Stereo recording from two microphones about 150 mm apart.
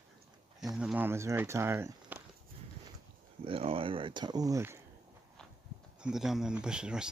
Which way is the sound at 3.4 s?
40° right (ahead or behind).